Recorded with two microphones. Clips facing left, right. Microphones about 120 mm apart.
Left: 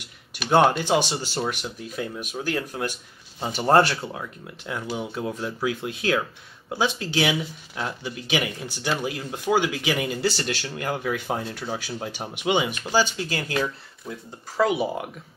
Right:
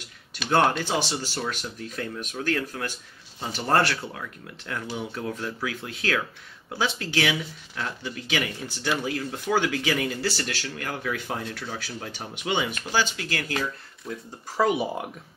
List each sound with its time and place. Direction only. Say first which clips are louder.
0.3 s speech: left 3 dB; 15° left (ahead or behind)
14.1 s speech: right 1 dB; 5° left (ahead or behind)
14.6 s speech: left 1 dB; 10° right (ahead or behind)